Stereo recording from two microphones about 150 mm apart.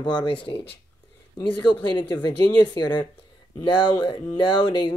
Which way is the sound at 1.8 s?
30° left (ahead or behind).